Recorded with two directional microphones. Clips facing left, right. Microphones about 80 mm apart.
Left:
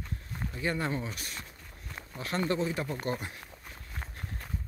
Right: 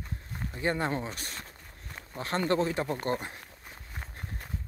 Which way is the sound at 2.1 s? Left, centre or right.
Right.